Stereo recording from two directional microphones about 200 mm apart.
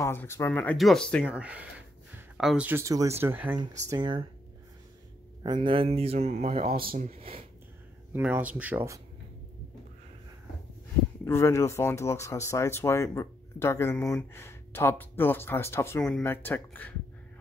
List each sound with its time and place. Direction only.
0.0 s speech: 10° left (ahead or behind)
1.3 s speech: 5° right (ahead or behind)
3.9 s speech: 25° right (ahead or behind)
5.4 s speech: 25° right (ahead or behind)
6.7 s speech: 45° right (ahead or behind)
7.1 s speech: 30° right (ahead or behind)
8.1 s speech: 10° right (ahead or behind)
11.2 s speech: 15° left (ahead or behind)